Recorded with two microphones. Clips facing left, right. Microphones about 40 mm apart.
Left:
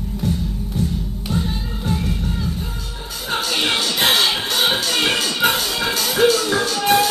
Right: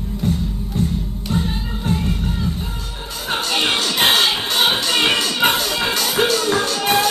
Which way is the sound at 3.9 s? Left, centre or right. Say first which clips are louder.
Right 2 dB; right.